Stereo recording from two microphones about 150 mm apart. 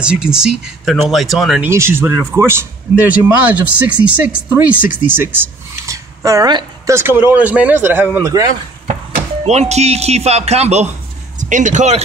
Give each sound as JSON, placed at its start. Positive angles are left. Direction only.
{"t": 0.0, "sound": "speech", "side_deg": -5}
{"t": 1.6, "sound": "speech", "side_deg": -15}
{"t": 9.4, "sound": "speech", "side_deg": -45}